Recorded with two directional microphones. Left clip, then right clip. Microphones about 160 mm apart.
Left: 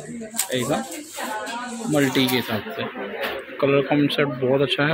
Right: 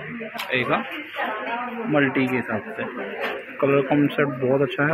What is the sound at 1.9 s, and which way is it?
Speech, 45° left (ahead or behind).